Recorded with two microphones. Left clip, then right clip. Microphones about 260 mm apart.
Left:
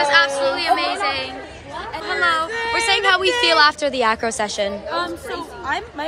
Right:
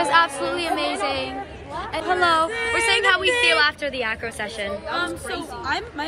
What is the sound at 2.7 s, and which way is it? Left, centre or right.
A woman's voice, centre.